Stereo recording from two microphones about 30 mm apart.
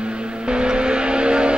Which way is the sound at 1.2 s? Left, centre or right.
Right.